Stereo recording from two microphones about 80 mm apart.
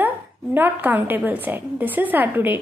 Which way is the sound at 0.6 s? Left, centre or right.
Right.